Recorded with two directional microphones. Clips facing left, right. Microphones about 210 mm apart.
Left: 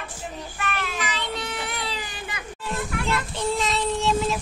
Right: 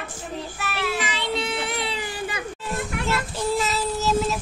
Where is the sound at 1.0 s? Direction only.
25° right (ahead or behind).